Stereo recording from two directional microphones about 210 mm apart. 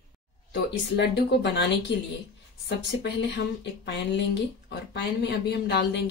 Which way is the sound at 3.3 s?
55° left (ahead or behind).